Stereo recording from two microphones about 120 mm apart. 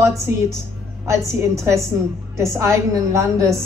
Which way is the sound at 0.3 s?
20° right (ahead or behind).